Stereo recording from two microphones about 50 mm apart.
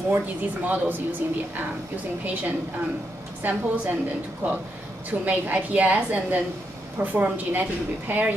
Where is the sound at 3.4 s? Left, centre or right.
Right.